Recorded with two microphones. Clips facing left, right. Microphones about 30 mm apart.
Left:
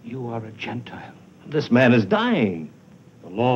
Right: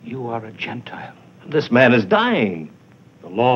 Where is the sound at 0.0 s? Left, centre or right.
Right.